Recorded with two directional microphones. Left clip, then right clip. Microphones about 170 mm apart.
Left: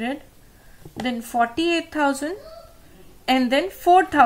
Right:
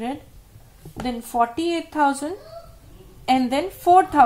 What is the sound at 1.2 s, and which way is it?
Speech, 40° left (ahead or behind).